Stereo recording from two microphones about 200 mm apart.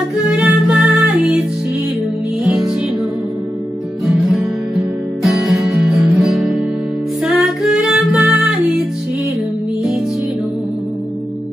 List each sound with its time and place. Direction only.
0.4 s music: 5° right (ahead or behind)
5.2 s guitar: centre (ahead or behind)
7.2 s music: centre (ahead or behind)